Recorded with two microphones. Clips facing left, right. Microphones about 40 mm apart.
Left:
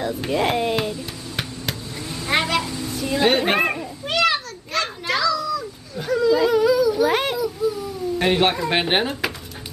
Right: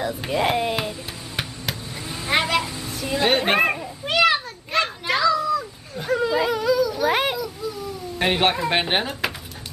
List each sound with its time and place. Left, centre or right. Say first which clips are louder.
0.0 s a sound: left 1 dB; centre
5.3 s children playing: right 2 dB; right
6.1 s whimper: left 4 dB; right
6.5 s a sound: left 4 dB; centre
7.3 s cat: left 6 dB; centre
8.2 s speech: left 1 dB; centre